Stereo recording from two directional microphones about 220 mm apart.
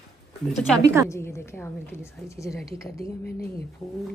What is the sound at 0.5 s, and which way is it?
Speech, centre (ahead or behind).